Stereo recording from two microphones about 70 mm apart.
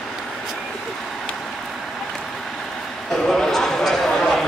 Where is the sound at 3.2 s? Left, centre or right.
Centre.